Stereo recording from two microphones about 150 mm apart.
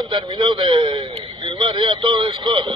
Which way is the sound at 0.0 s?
30° right (ahead or behind).